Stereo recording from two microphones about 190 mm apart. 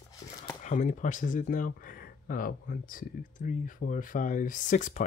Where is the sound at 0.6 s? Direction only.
40° left (ahead or behind).